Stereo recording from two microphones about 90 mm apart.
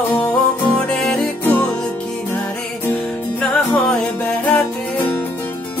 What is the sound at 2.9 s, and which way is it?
Music, 15° left (ahead or behind).